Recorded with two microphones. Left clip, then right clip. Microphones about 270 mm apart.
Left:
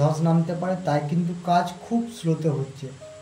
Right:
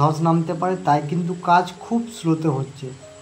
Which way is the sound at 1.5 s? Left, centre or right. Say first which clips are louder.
Right 5 dB; centre.